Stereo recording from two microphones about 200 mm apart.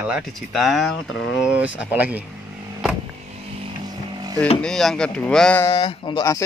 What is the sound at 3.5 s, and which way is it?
Vehicle, 25° right (ahead or behind).